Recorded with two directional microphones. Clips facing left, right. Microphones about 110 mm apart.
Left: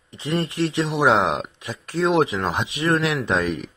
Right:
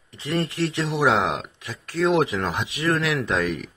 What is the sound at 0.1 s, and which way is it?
Speech, 20° left (ahead or behind).